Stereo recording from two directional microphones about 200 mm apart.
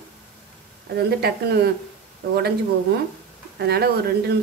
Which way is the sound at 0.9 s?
55° right (ahead or behind).